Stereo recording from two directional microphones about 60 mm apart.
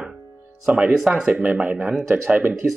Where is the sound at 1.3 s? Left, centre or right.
Right.